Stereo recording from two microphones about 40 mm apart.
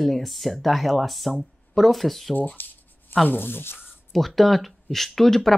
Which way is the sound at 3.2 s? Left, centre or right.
Left.